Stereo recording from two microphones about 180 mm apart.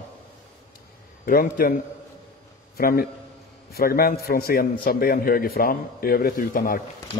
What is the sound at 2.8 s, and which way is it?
A man's voice, 55° left (ahead or behind).